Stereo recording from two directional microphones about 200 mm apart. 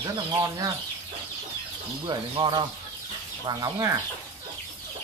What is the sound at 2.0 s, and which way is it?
Speech, 25° right (ahead or behind).